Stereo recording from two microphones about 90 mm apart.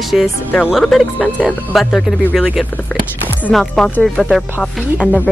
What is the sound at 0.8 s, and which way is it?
Speech, 10° left (ahead or behind).